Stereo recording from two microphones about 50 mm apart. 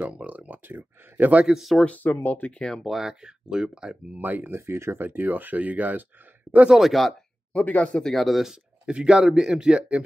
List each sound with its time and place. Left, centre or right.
0.0 s speech: right
1.4 s speech: centre
2.2 s speech: left
2.6 s speech: centre
3.2 s speech: centre
4.2 s speech: right
4.5 s speech: right
4.9 s speech: right
6.7 s speech: centre
7.5 s speech: left
8.0 s speech: centre
8.8 s speech: centre